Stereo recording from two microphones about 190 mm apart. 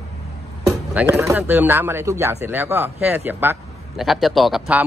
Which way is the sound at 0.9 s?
10° right (ahead or behind).